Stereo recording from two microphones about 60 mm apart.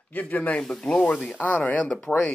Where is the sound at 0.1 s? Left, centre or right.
Left.